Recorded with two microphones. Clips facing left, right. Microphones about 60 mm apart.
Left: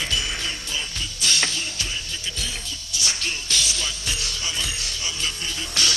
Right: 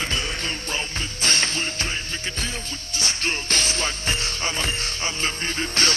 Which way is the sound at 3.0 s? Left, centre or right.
Right.